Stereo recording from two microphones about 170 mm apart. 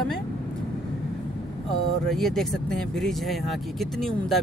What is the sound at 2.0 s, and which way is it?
Speech, centre (ahead or behind).